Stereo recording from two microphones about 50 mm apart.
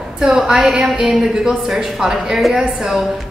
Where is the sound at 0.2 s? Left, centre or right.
Centre.